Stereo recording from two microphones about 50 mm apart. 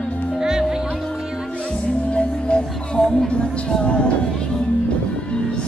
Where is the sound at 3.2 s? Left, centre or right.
Centre.